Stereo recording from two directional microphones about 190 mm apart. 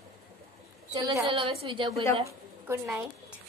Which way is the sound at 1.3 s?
30° right (ahead or behind).